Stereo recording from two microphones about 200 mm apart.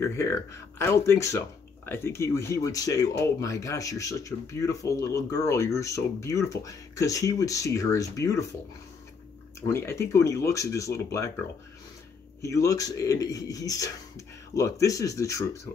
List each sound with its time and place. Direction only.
0.0 s speech: 15° left (ahead or behind)
9.7 s speech: 15° left (ahead or behind)
12.4 s speech: 15° left (ahead or behind)